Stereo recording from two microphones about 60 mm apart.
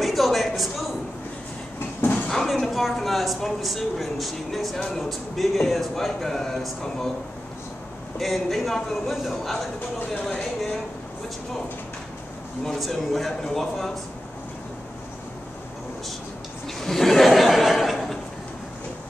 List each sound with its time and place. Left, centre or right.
0.0 s a sound: centre
2.0 s a sound: left
2.2 s speech: centre
8.2 s speech: centre
12.6 s a man's voice: centre
16.6 s chuckle: centre